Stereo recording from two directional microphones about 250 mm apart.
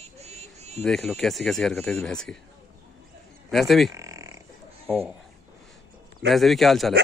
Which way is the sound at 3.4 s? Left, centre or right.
Centre.